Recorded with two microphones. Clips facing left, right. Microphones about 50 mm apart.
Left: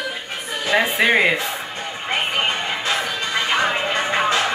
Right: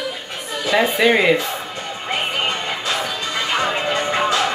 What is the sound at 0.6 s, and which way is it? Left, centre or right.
Speech, centre.